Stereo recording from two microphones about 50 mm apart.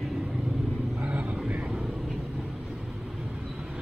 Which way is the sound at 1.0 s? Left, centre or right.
Right.